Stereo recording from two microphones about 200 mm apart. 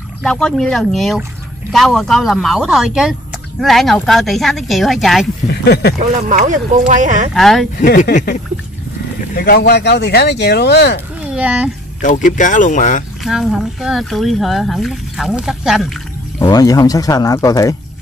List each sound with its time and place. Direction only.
0.2 s speech: 5° left (ahead or behind)
5.5 s speech: 55° left (ahead or behind)
5.9 s speech: 40° right (ahead or behind)
7.3 s speech: centre (ahead or behind)
7.8 s speech: 45° left (ahead or behind)
9.4 s speech: 55° left (ahead or behind)
11.3 s speech: 5° right (ahead or behind)
12.0 s speech: 40° left (ahead or behind)
13.2 s speech: centre (ahead or behind)
16.3 s speech: 20° left (ahead or behind)